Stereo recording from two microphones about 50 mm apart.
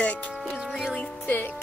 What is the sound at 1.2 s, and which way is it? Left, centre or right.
Music, left.